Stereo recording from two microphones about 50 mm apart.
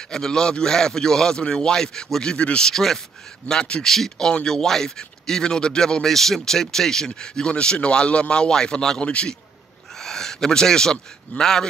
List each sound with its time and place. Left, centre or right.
0.1 s speech: centre
2.7 s speech: centre
3.4 s speech: centre
9.9 s speech: centre